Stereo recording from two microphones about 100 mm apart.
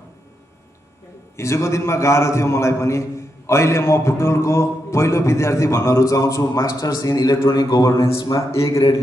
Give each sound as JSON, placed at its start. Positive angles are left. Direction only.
{"t": 1.3, "sound": "a man's voice", "side_deg": 30}